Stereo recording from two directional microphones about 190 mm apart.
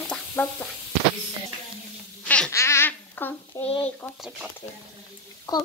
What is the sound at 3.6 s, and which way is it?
Speech, 30° left (ahead or behind).